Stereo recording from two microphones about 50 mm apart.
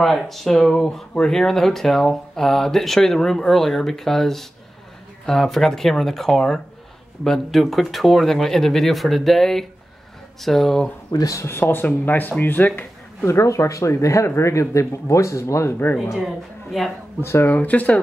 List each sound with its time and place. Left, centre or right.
0.0 s speech: centre
11.2 s speech: left
11.5 s speech: left
13.2 s speech: left
17.2 s speech: left
17.5 s speech: left